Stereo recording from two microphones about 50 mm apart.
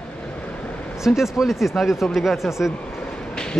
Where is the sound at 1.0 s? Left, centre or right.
Centre.